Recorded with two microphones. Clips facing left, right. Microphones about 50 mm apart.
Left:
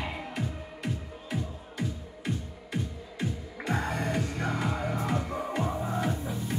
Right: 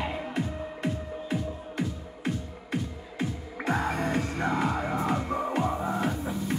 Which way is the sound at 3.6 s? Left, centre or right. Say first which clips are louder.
Right 3 dB; right.